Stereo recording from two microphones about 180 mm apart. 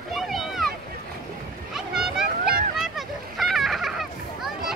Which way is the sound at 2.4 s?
55° right (ahead or behind).